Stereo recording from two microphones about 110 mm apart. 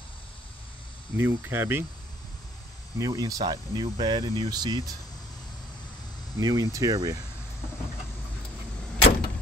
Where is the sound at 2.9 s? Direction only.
30° right (ahead or behind).